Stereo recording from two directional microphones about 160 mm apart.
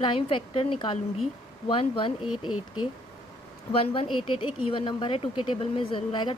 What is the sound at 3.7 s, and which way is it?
Speech, 35° left (ahead or behind).